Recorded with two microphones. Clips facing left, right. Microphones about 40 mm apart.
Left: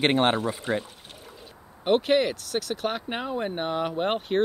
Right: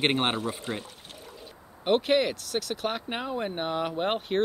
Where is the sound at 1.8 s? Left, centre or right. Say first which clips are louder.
Left 2 dB; centre.